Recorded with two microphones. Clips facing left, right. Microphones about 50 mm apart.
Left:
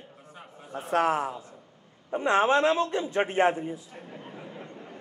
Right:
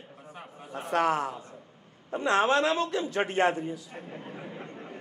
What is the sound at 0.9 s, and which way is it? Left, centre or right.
A man's voice, left.